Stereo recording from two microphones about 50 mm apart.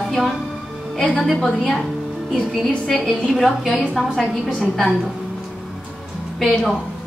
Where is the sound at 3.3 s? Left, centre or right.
Centre.